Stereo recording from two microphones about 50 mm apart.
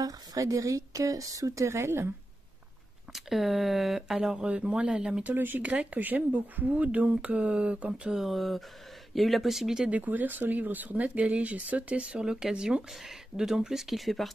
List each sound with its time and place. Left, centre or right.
0.4 s speech: right
3.1 s speech: centre
4.5 s speech: right
5.2 s speech: right
5.7 s speech: right
8.1 s speech: centre
9.8 s speech: right; by 14.3 s centre